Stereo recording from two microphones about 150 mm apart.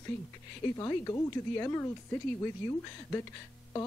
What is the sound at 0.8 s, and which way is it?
Speech, 25° left (ahead or behind).